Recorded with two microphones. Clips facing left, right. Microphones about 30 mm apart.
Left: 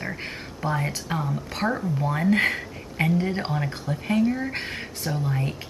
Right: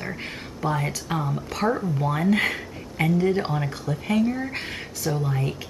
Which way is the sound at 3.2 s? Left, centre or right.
Centre.